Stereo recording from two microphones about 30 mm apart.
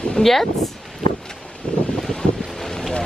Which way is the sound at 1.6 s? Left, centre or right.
Left.